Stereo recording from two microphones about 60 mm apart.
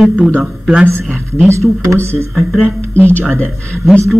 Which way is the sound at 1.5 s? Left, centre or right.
Right.